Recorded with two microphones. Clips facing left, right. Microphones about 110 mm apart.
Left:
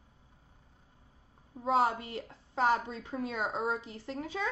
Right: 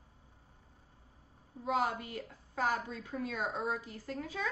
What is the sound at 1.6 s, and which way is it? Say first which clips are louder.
A woman's voice: left 5 dB; 30° left (ahead or behind).